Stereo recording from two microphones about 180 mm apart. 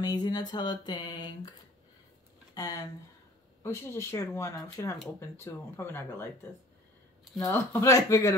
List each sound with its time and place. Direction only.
0.0 s a sound: 20° left (ahead or behind)
2.5 s speech: 20° left (ahead or behind)
7.3 s speech: 15° left (ahead or behind)